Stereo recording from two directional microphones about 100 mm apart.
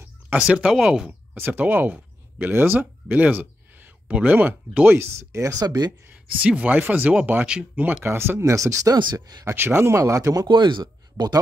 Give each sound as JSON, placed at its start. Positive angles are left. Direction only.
{"t": 0.3, "sound": "speech", "side_deg": -10}
{"t": 1.3, "sound": "speech", "side_deg": -20}
{"t": 6.0, "sound": "speech", "side_deg": -15}
{"t": 9.4, "sound": "speech", "side_deg": -25}
{"t": 10.5, "sound": "speech", "side_deg": -50}